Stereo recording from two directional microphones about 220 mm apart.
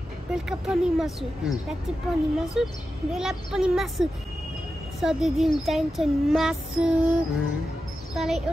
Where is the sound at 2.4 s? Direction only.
Centre (ahead or behind).